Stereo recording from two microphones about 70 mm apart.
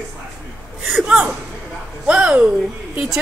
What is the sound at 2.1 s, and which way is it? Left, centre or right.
Speech, centre.